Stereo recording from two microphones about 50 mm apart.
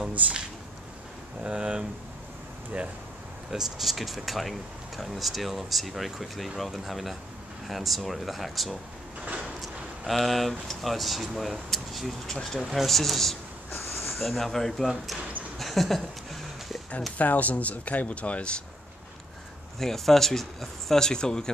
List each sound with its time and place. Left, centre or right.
1.4 s speech: right
3.4 s speech: centre
9.6 s a sound: centre
10.7 s speech: centre
15.6 s a sound: centre
17.2 s speech: left
19.8 s speech: centre